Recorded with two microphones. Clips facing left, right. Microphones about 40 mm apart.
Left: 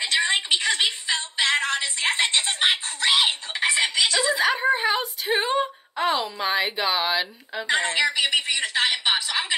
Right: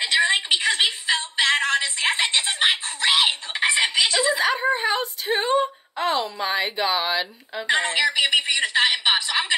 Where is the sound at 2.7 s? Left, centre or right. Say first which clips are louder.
Right 1 dB; right.